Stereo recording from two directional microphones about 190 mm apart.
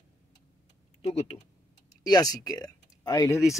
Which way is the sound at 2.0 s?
20° left (ahead or behind).